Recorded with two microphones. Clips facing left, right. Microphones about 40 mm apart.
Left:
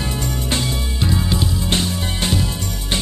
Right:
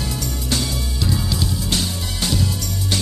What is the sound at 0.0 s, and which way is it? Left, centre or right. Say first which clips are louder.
Music: left 3 dB; left.